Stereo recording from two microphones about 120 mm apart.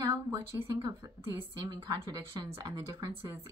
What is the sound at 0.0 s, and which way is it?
A woman's voice, 25° right (ahead or behind).